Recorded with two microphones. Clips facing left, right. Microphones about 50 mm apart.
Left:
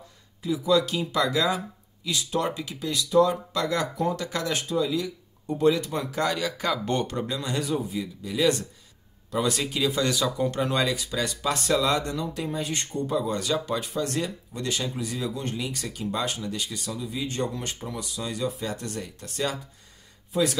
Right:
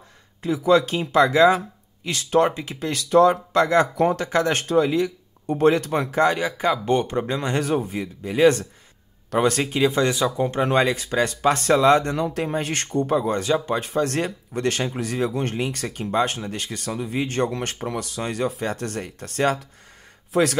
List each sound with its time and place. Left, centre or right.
0.4 s speech: right
2.0 s speech: right
2.9 s speech: right
4.6 s speech: right
7.2 s speech: right
13.1 s speech: right